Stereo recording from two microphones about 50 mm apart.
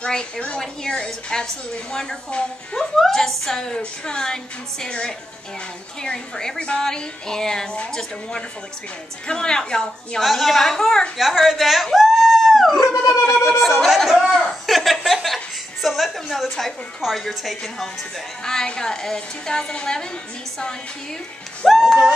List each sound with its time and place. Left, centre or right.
0.0 s a woman's voice: centre
6.0 s a woman's voice: centre
10.2 s a woman's voice: centre
11.1 s dog: centre
13.6 s speech: centre
14.0 s a man's voice: centre
14.4 s a sound: centre
15.2 s chuckle: centre
17.0 s a woman's voice: centre
18.4 s a woman's voice: centre
21.6 s speech: centre